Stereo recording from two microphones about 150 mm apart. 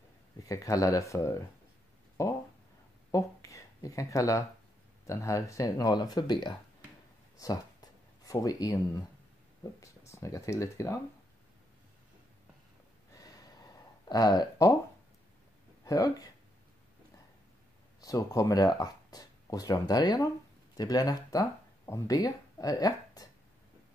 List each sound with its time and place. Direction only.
0.5 s speech: 20° left (ahead or behind)
2.2 s a sound: 20° left (ahead or behind)
5.0 s speech: 20° left (ahead or behind)
7.3 s a sound: 25° left (ahead or behind)
9.6 s speech: 20° left (ahead or behind)
13.1 s a sound: 25° left (ahead or behind)
14.0 s speech: 25° left (ahead or behind)
15.8 s speech: 25° left (ahead or behind)
18.0 s speech: 20° left (ahead or behind)